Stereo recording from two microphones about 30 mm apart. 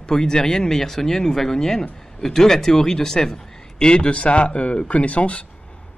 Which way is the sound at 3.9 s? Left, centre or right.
Left.